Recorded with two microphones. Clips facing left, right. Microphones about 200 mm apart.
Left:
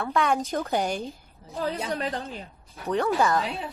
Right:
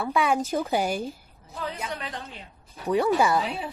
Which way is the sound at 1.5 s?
35° left (ahead or behind).